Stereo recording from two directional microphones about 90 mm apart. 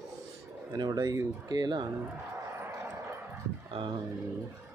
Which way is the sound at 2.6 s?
30° right (ahead or behind).